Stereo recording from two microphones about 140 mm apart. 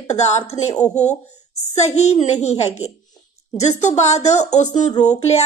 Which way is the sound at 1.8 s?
50° left (ahead or behind).